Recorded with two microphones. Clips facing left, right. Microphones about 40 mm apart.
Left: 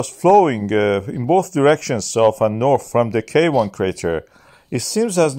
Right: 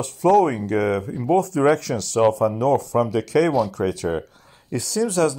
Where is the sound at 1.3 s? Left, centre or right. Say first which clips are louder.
Left 4 dB; left.